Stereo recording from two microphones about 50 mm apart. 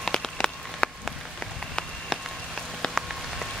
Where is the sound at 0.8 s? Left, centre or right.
Left.